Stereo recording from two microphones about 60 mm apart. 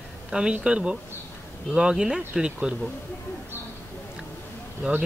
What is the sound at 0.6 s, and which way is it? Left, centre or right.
A man's voice, centre.